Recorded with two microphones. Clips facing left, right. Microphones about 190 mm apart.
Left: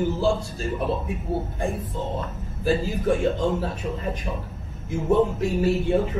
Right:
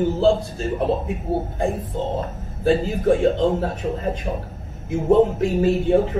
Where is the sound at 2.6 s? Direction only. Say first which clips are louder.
Right 5 dB; 25° right (ahead or behind).